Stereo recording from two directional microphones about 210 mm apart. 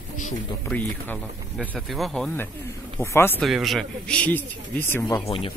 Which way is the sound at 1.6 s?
5° right (ahead or behind).